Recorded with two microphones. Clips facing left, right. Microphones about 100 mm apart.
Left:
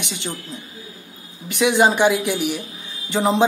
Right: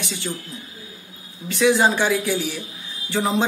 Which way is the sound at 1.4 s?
20° left (ahead or behind).